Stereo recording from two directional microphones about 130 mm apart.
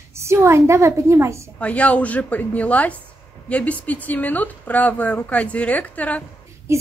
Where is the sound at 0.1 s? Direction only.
20° right (ahead or behind).